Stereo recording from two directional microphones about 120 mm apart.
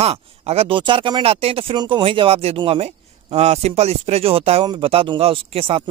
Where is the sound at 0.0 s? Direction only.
60° right (ahead or behind).